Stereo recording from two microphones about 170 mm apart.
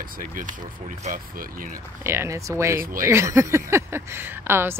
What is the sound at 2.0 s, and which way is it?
Speech, 15° right (ahead or behind).